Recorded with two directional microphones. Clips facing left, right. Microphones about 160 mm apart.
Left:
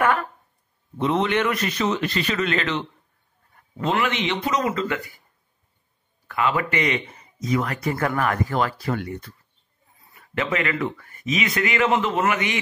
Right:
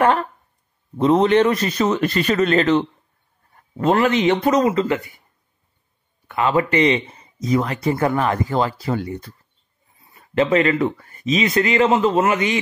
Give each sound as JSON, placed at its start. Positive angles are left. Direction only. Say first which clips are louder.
{"t": 0.9, "sound": "a man's voice", "louder": "right 7 dB", "side_deg": -40}
{"t": 4.6, "sound": "speech", "louder": "right 6 dB", "side_deg": -25}
{"t": 6.2, "sound": "speech", "louder": "right 4 dB", "side_deg": -25}